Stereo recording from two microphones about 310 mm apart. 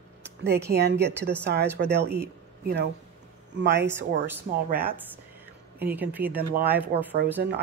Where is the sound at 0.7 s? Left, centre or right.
Right.